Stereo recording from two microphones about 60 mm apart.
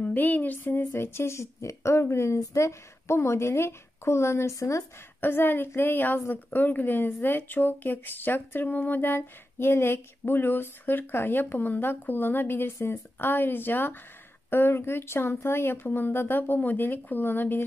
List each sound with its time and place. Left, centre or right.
0.0 s speech: left
0.7 s a woman's voice: left
5.2 s a woman's voice: left